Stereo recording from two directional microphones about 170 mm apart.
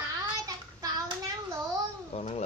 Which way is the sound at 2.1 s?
40° left (ahead or behind).